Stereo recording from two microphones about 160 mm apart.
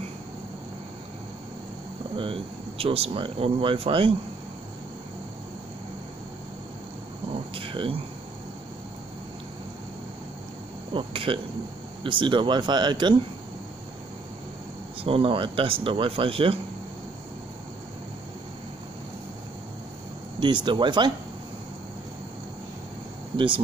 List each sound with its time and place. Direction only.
2.1 s speech: 35° right (ahead or behind)
7.5 s a sound: 35° right (ahead or behind)
10.9 s speech: 30° right (ahead or behind)
15.0 s speech: 35° right (ahead or behind)
20.3 s speech: 30° right (ahead or behind)
23.3 s speech: 30° right (ahead or behind)